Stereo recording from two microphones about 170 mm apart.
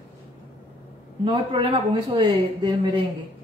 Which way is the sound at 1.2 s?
30° right (ahead or behind).